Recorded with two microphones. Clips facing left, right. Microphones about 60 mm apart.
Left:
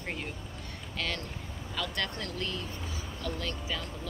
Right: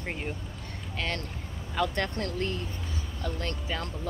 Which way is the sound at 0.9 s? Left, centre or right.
Right.